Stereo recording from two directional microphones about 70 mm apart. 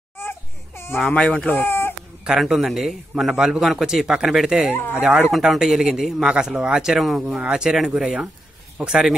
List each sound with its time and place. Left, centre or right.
0.2 s crying: left
1.1 s speech: centre
1.5 s baby cry: left
2.2 s a man's voice: centre
4.7 s speech: left
5.0 s a man's voice: centre
5.3 s a man's voice: centre